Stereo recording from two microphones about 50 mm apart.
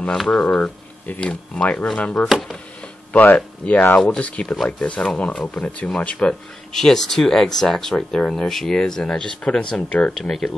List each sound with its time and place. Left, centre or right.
0.1 s speech: centre
0.4 s speech: left
6.7 s speech: centre